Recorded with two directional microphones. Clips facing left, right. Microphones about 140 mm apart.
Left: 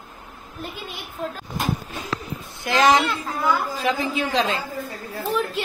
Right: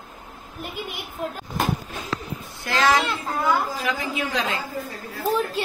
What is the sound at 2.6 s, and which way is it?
A woman's voice, 20° left (ahead or behind).